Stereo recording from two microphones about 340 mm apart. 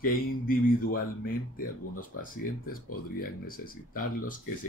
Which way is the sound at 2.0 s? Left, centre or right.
Left.